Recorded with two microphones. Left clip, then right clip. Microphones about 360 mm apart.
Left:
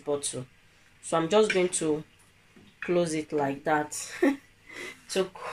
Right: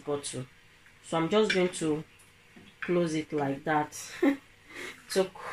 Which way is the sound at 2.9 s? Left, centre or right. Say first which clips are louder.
Left 2 dB; left.